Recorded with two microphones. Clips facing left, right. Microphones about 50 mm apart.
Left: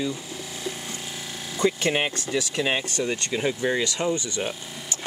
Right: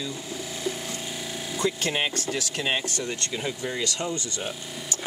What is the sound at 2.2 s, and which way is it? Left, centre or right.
Speech, centre.